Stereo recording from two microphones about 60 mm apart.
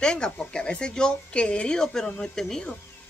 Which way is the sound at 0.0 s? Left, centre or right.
Centre.